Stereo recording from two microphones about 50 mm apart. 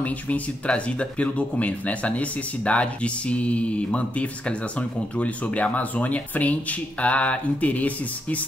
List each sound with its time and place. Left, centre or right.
0.7 s speech: left